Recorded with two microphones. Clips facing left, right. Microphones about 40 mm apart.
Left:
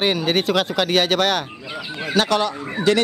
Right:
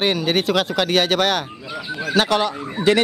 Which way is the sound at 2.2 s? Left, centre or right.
Centre.